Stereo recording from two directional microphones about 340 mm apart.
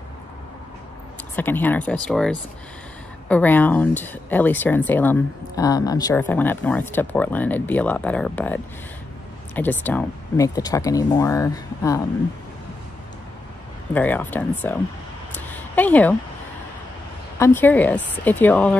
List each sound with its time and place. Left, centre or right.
1.3 s speech: centre
9.6 s speech: centre
13.9 s speech: centre
15.3 s a sound: centre
17.4 s speech: centre